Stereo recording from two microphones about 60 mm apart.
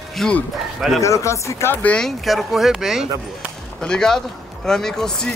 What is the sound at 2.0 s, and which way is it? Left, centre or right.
Speech, centre.